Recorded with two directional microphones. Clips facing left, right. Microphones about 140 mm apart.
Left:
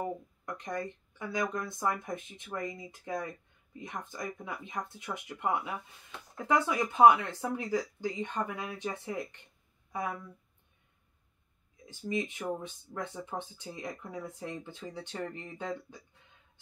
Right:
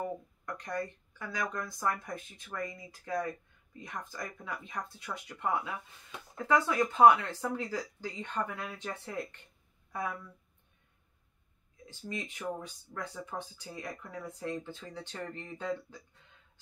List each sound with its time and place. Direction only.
0.5 s speech: 20° left (ahead or behind)
11.9 s speech: 20° left (ahead or behind)